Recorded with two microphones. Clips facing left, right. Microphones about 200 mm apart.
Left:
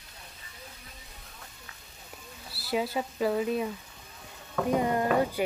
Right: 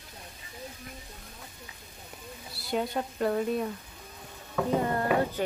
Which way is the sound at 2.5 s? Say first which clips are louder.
Left 1 dB; 5° left (ahead or behind).